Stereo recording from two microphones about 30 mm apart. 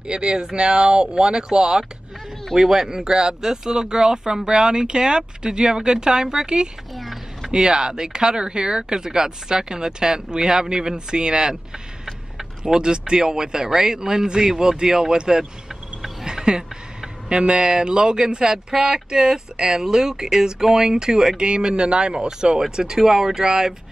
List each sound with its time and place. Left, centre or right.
0.0 s speech: right
7.0 s a sound: centre
7.5 s speech: right
16.3 s a sound: right
17.3 s speech: right
21.4 s speech: right